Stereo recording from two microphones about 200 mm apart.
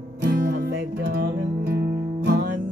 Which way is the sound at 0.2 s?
55° right (ahead or behind).